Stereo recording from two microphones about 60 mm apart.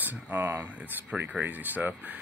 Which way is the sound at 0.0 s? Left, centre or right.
Right.